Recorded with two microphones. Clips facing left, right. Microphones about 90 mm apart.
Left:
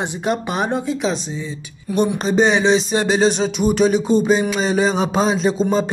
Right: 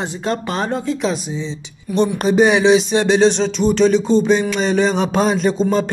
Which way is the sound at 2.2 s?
5° right (ahead or behind).